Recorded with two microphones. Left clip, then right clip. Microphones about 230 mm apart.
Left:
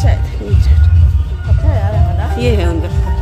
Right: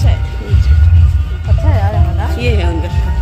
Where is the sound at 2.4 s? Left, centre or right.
Centre.